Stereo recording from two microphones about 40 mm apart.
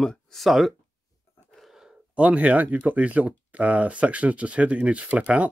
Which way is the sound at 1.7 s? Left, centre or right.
Centre.